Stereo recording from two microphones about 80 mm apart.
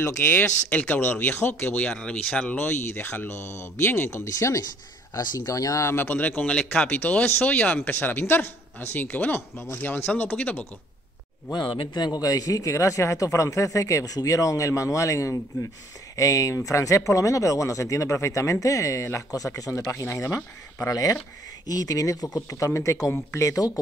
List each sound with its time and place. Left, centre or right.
0.0 s speech: left
2.0 s speech: centre
2.5 s speech: left
5.1 s speech: left; by 10.7 s centre
11.5 s a man's voice: left